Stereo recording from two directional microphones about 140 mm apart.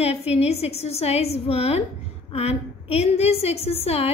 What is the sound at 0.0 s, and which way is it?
A woman's voice, 45° left (ahead or behind).